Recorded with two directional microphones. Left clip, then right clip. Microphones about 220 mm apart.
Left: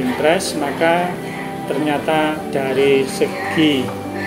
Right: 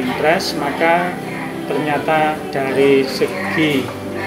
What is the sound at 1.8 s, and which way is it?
Speech, 25° left (ahead or behind).